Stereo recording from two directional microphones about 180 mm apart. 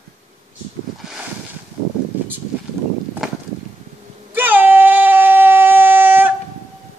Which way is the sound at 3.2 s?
Centre (ahead or behind).